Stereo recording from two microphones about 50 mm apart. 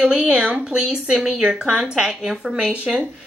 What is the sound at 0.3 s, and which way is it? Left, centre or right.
Speech, centre.